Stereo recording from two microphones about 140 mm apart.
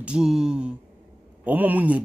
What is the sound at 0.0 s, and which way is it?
A man's voice, 5° right (ahead or behind).